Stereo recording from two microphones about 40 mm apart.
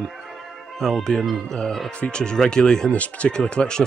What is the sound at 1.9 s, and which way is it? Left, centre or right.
Speech, left.